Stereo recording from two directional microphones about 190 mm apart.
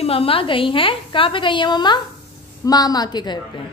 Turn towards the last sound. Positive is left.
turn(degrees=20)  # may be behind; listen again after turning